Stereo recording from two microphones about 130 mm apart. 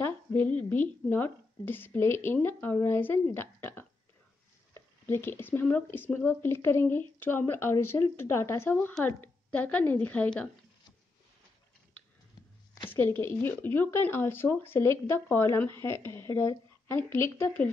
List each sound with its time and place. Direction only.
0.0 s a sound: 15° left (ahead or behind)
0.7 s a woman's voice: 15° left (ahead or behind)
13.2 s a woman's voice: 15° left (ahead or behind)